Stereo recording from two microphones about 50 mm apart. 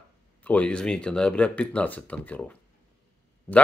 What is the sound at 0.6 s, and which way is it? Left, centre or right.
Speech, centre.